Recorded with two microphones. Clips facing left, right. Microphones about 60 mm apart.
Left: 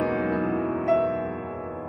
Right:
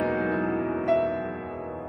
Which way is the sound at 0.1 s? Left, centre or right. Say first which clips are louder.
Left 1 dB; left.